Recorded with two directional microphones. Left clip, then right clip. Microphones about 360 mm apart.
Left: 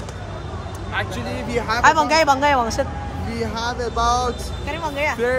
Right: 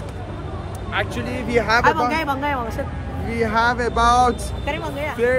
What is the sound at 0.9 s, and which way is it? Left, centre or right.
Speech, centre.